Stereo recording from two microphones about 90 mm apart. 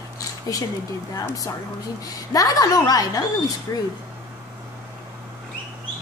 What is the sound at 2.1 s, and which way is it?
A woman's voice, 40° left (ahead or behind).